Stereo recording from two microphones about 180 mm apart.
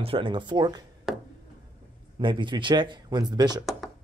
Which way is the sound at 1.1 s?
Centre (ahead or behind).